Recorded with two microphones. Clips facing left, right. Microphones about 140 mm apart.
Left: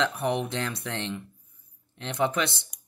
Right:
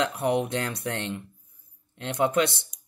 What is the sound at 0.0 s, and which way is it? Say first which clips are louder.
Speech: right 2 dB; 20° right (ahead or behind).